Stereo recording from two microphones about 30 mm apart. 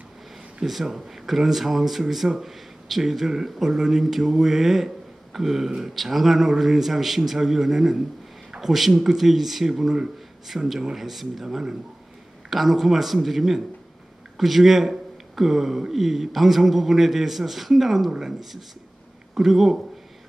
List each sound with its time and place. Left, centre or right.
0.8 s a man's voice: centre
19.3 s speech: centre